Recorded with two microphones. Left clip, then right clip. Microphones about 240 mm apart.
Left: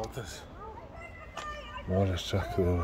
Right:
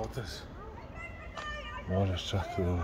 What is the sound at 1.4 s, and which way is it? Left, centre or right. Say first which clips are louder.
Cat: even; left.